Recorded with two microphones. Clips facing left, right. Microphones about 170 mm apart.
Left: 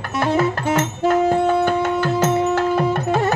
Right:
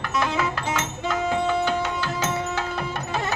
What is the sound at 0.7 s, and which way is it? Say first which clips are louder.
Music: left 9 dB; 50° left (ahead or behind).